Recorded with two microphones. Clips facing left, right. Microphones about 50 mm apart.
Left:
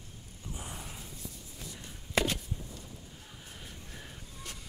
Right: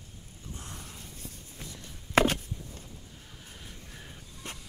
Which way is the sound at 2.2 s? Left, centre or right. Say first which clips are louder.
Right 6 dB; right.